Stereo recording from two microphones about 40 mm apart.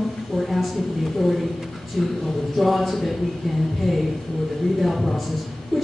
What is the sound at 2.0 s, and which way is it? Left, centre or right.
A woman's voice, centre.